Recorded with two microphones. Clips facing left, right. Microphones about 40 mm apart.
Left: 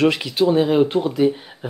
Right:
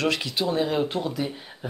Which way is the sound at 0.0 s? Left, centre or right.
Centre.